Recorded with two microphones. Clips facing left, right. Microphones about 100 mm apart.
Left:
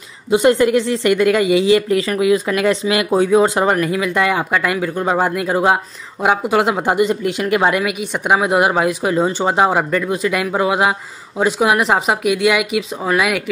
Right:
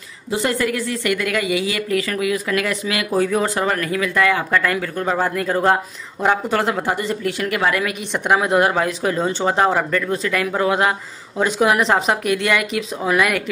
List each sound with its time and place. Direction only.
0.3 s a woman's voice: 20° left (ahead or behind)
7.8 s speech: 10° left (ahead or behind)